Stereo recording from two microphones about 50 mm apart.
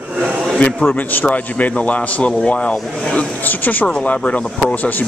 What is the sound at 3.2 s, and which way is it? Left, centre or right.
A man's voice, left.